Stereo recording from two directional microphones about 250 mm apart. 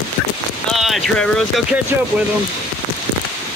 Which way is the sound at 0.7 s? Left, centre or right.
Centre.